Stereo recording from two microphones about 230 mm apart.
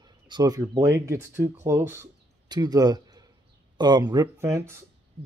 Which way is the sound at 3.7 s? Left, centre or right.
Centre.